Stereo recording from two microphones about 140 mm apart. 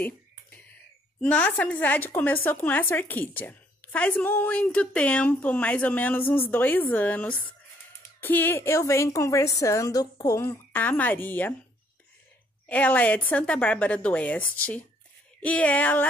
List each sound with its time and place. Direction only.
0.0 s a sound: 10° left (ahead or behind)
1.2 s a woman's voice: 10° left (ahead or behind)
12.6 s a woman's voice: 10° left (ahead or behind)